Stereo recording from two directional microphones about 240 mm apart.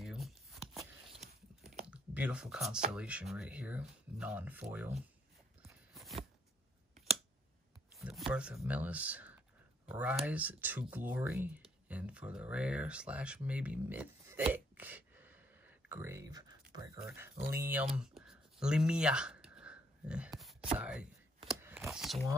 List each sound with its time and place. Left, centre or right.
0.0 s shuffling cards: centre
1.2 s biting: right
1.9 s speech: centre
5.9 s shuffling cards: centre
8.3 s speech: centre
11.9 s a sound: centre